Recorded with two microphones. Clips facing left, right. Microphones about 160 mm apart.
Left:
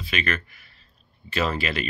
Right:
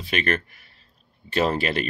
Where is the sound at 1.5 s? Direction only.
50° right (ahead or behind).